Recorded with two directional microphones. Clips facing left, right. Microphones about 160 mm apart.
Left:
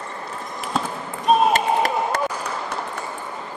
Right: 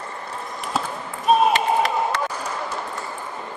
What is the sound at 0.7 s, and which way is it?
Basketball bounce, centre (ahead or behind).